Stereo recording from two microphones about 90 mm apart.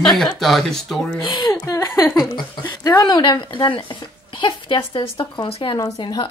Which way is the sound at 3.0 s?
50° left (ahead or behind).